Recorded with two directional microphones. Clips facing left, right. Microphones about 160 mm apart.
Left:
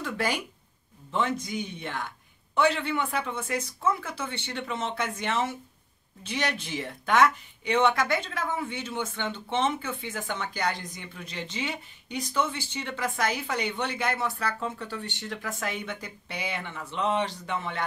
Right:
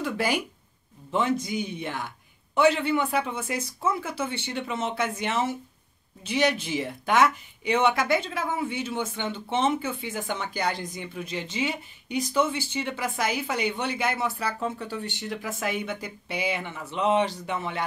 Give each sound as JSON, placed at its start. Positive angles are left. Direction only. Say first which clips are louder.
{"t": 1.1, "sound": "speech", "louder": "right 3 dB", "side_deg": -10}